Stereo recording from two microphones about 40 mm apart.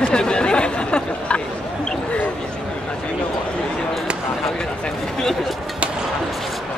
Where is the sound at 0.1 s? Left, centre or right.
Left.